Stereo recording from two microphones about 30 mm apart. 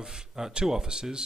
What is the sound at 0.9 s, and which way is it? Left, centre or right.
Speech, right.